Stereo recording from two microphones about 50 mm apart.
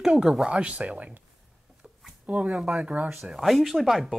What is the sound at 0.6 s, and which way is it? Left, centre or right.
Speech, right.